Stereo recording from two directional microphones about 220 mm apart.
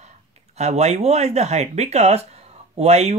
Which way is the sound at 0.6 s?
30° right (ahead or behind).